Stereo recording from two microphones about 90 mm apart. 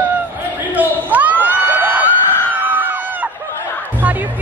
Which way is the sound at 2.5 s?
20° right (ahead or behind).